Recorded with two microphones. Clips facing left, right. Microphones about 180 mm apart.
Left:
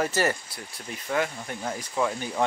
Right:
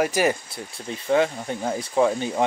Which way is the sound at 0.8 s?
25° right (ahead or behind).